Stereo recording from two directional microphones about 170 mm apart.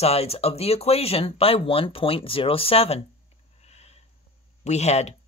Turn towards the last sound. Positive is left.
turn(degrees=40)  # may be behind; listen again after turning